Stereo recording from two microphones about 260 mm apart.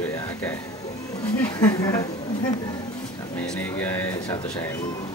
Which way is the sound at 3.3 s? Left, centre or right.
Centre.